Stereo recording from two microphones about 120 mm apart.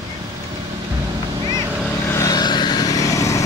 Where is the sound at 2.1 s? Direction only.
30° left (ahead or behind).